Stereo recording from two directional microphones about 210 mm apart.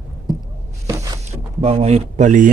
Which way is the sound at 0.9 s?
15° right (ahead or behind).